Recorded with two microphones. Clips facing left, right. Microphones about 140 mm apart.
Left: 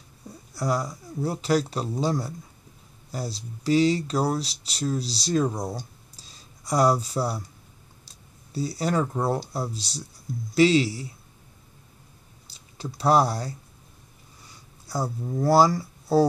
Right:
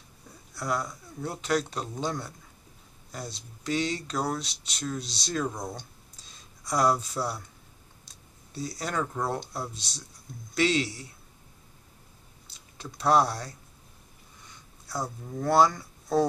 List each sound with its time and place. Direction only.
0.6 s speech: 35° left (ahead or behind)
5.8 s a sound: 35° left (ahead or behind)
8.5 s speech: 30° left (ahead or behind)
12.9 s speech: 30° left (ahead or behind)
14.4 s a sound: 35° left (ahead or behind)
15.2 s speech: 30° left (ahead or behind)